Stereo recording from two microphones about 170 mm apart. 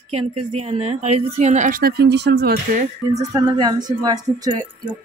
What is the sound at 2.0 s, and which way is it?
Speech, 90° right.